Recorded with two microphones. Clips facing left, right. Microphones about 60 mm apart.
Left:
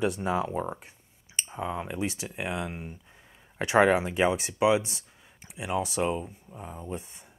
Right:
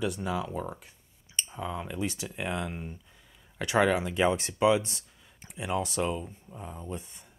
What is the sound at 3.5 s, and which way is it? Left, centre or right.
Speech, left.